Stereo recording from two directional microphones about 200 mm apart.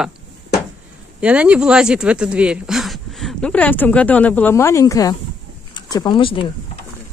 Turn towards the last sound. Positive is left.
turn(degrees=25)  # may be behind; listen again after turning